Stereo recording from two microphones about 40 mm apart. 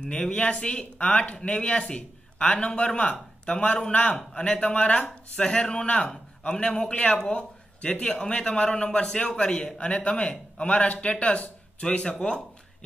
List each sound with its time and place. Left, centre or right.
0.0 s a man's voice: left
1.0 s a man's voice: left
1.3 s a man's voice: left
11.8 s a man's voice: left